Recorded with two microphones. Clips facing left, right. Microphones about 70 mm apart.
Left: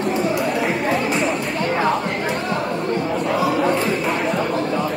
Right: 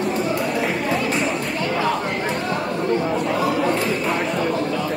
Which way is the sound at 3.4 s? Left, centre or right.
Centre.